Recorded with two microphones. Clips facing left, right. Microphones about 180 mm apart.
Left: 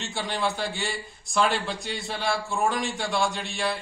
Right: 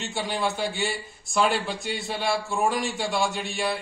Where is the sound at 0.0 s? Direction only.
Centre (ahead or behind).